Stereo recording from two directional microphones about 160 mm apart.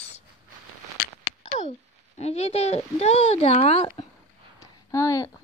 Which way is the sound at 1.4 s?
50° left (ahead or behind).